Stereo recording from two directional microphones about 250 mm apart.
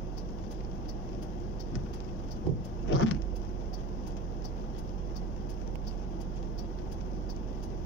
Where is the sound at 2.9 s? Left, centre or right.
Left.